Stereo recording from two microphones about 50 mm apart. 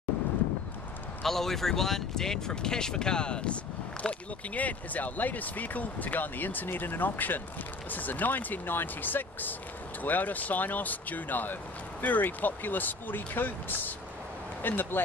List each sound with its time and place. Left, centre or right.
1.2 s speech: centre; by 15.0 s left